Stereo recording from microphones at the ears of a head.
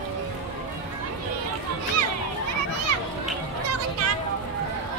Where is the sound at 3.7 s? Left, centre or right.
Right.